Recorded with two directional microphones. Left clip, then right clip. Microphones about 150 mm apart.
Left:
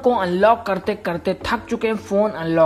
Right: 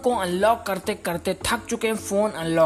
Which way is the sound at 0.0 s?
15° right (ahead or behind).